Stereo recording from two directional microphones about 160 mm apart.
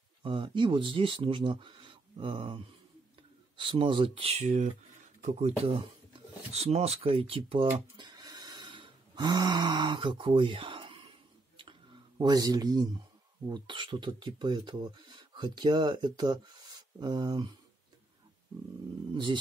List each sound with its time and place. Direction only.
0.2 s speech: 30° right (ahead or behind)
11.5 s a sound: 30° right (ahead or behind)
13.5 s speech: 30° right (ahead or behind)